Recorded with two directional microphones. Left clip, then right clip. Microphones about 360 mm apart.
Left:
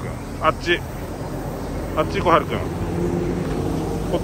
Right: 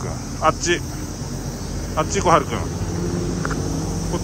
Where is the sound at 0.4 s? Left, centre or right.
Centre.